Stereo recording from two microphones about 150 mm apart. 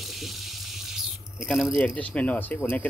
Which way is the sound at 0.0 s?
Centre (ahead or behind).